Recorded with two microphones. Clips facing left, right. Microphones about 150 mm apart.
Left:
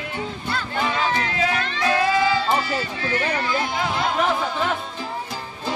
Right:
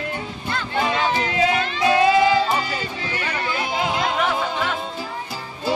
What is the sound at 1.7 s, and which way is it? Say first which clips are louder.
Music: right 4 dB; 20° right (ahead or behind).